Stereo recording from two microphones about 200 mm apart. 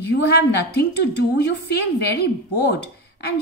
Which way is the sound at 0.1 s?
55° left (ahead or behind).